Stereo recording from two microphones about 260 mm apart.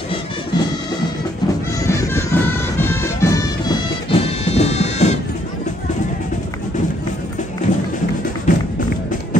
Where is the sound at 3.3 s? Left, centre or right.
Centre.